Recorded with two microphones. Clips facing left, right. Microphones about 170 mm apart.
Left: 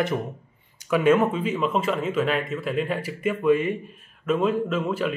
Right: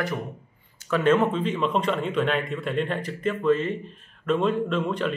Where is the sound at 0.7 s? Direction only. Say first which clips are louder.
Left 2 dB; 10° left (ahead or behind).